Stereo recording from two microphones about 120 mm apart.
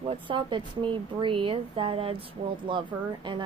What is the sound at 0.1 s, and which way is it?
A woman's voice, 45° right (ahead or behind).